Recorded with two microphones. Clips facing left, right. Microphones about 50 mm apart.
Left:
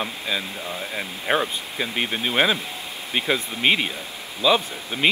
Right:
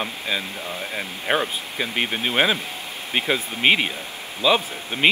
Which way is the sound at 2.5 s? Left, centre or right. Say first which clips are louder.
Right 1 dB; centre.